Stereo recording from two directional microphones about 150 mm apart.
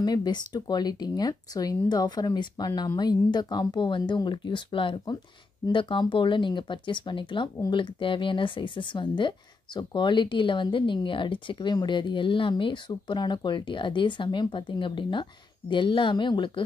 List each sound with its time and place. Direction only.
0.0 s speech: 25° left (ahead or behind)